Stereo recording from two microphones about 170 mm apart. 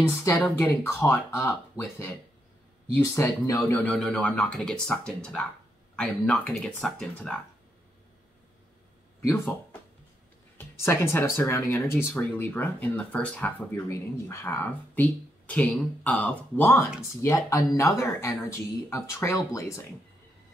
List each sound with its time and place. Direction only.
0.2 s speech: 10° left (ahead or behind)
9.2 s speech: 15° left (ahead or behind)
10.8 s speech: 15° left (ahead or behind)